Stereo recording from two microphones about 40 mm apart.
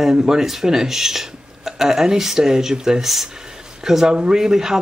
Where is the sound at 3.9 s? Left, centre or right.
Centre.